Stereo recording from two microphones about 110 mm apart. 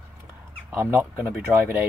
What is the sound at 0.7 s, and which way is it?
A man's voice, 25° right (ahead or behind).